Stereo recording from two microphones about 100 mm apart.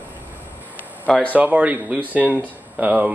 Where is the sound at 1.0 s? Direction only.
10° left (ahead or behind).